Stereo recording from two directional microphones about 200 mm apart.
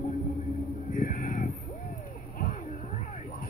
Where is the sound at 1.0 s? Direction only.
45° left (ahead or behind).